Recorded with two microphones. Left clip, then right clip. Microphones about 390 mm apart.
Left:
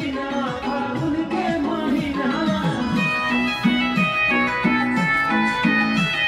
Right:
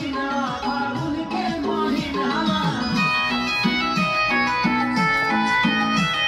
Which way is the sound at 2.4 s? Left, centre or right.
Centre.